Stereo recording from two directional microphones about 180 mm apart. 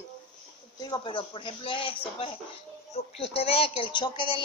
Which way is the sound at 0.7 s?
20° left (ahead or behind).